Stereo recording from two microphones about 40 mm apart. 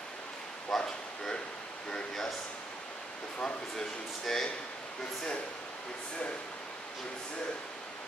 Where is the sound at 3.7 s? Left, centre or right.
Centre.